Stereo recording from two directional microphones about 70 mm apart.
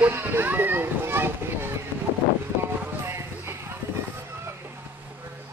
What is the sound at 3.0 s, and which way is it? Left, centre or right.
Music, right.